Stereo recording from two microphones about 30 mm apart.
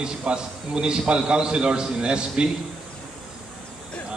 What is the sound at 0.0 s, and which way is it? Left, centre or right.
A man's voice, right.